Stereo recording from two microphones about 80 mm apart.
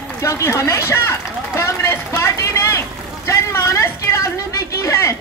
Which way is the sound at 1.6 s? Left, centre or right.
Left.